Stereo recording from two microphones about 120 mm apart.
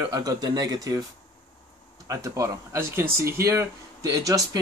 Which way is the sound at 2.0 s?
25° right (ahead or behind).